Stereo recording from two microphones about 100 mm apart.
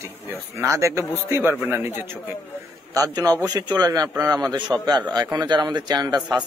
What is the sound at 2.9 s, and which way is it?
A man's voice, 35° right (ahead or behind).